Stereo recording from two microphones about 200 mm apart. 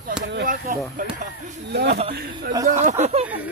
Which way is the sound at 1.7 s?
55° right (ahead or behind).